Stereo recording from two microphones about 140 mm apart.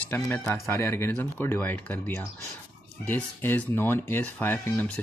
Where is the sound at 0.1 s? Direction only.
15° left (ahead or behind).